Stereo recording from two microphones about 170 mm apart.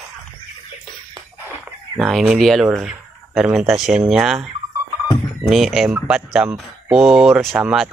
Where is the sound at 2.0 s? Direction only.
Centre (ahead or behind).